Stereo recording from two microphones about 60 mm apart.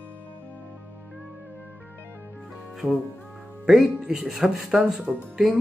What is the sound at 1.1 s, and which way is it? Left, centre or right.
Music, right.